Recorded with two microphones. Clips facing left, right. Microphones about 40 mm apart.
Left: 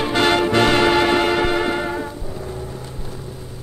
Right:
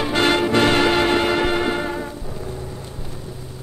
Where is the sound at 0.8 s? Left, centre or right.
Left.